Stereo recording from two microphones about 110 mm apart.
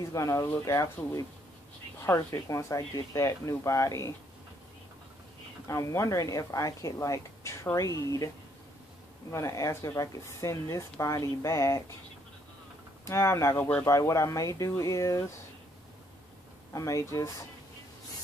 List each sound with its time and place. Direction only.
0.1 s speech: 30° left (ahead or behind)
2.1 s speech: 30° left (ahead or behind)
5.7 s speech: 30° left (ahead or behind)
9.3 s speech: 30° left (ahead or behind)
13.0 s speech: 25° left (ahead or behind)
16.7 s speech: 30° left (ahead or behind)